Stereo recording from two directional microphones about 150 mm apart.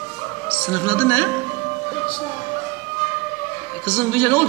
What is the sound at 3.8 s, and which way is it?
Speech, 15° left (ahead or behind).